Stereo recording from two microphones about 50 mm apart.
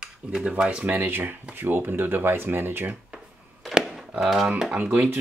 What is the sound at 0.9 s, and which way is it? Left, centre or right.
Speech, right.